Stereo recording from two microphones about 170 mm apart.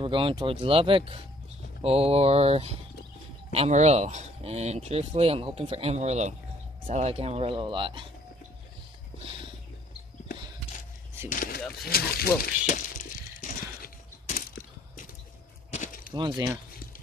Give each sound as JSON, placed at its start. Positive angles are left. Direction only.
{"t": 0.0, "sound": "speech", "side_deg": -30}
{"t": 11.2, "sound": "speech", "side_deg": 55}
{"t": 13.4, "sound": "a sound", "side_deg": 50}
{"t": 15.7, "sound": "keys jangling", "side_deg": 50}